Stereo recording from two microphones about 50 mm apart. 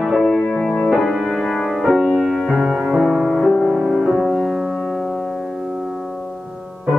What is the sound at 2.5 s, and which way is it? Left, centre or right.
Music, centre.